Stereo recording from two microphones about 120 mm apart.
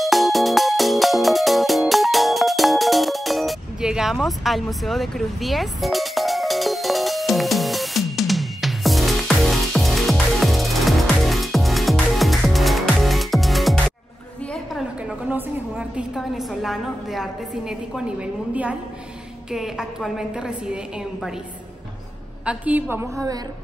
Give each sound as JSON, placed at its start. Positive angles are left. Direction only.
{"t": 0.0, "sound": "music", "side_deg": 0}
{"t": 14.5, "sound": "a sound", "side_deg": 0}
{"t": 15.2, "sound": "a woman's voice", "side_deg": -10}
{"t": 22.4, "sound": "a woman's voice", "side_deg": -10}